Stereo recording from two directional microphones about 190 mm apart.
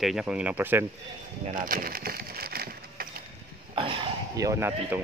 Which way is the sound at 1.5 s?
45° right (ahead or behind).